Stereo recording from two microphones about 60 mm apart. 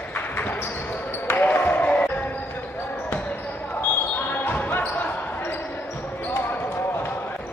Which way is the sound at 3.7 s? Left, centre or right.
Left.